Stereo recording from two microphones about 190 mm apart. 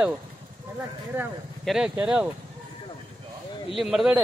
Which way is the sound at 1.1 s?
10° right (ahead or behind).